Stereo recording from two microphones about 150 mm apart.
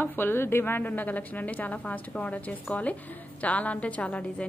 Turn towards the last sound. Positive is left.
turn(degrees=10)  # may be behind; listen again after turning